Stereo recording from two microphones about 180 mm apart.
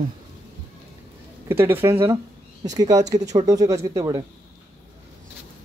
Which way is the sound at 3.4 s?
20° right (ahead or behind).